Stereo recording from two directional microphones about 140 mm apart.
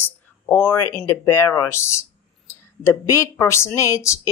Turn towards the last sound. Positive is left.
turn(degrees=20)  # may be behind; listen again after turning